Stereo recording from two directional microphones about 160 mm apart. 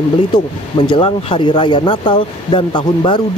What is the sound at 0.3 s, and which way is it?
Speech, 30° left (ahead or behind).